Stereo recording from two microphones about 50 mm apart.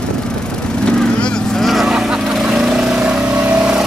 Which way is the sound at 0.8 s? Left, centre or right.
Centre.